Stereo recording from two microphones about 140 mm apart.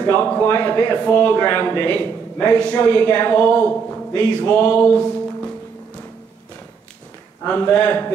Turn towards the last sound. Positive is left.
turn(degrees=10)  # may be behind; listen again after turning